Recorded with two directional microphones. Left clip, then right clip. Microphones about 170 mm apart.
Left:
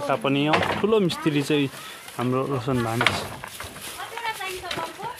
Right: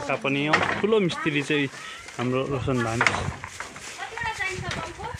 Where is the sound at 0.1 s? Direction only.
25° left (ahead or behind).